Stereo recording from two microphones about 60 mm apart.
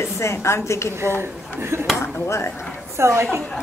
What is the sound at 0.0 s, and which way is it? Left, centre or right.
Speech, left.